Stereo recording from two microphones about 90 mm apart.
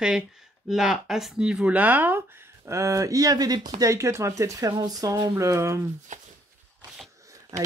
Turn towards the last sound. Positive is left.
turn(degrees=-40)  # may be behind; listen again after turning